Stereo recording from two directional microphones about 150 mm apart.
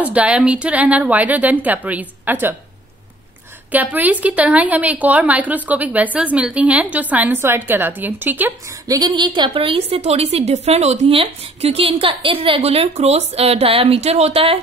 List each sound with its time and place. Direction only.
0.0 s a woman's voice: 10° right (ahead or behind)
3.7 s a woman's voice: 10° right (ahead or behind)
8.8 s a woman's voice: 25° right (ahead or behind)